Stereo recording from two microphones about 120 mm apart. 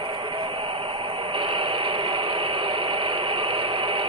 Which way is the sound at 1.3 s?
45° right (ahead or behind).